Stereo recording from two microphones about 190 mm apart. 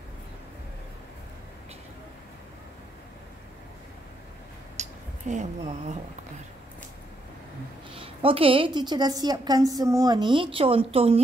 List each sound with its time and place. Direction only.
4.8 s a sound: 35° right (ahead or behind)
5.3 s speech: 40° right (ahead or behind)
7.9 s a woman's voice: 30° right (ahead or behind)